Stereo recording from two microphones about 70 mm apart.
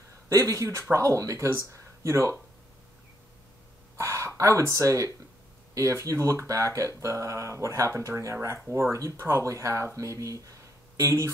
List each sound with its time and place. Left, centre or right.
0.3 s speech: right
3.9 s a sound: right
4.4 s speech: right